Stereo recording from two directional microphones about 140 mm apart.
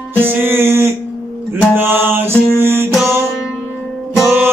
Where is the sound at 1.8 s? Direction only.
15° right (ahead or behind).